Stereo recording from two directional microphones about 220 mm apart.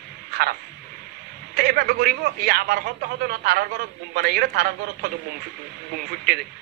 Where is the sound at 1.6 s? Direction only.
45° right (ahead or behind).